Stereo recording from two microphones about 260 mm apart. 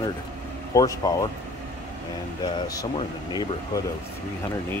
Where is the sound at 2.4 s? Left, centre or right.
Centre.